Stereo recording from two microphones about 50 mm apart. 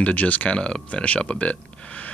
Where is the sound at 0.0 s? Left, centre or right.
Left.